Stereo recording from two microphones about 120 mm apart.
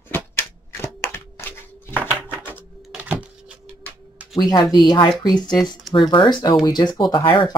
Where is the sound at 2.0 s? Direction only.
15° right (ahead or behind).